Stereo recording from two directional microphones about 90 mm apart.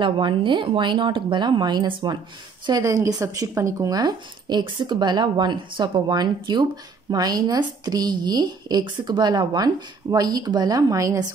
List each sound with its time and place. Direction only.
0.0 s speech: 65° right (ahead or behind)
2.6 s speech: 40° right (ahead or behind)